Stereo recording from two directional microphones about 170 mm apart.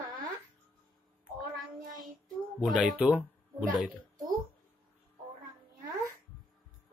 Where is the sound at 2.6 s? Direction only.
5° right (ahead or behind).